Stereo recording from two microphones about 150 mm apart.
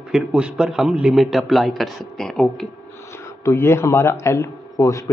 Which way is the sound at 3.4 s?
20° left (ahead or behind).